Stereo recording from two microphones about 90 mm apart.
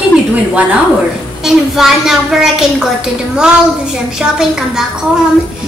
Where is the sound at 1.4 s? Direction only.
5° right (ahead or behind).